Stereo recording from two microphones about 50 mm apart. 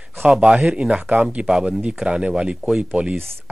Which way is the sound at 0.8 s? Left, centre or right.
Right.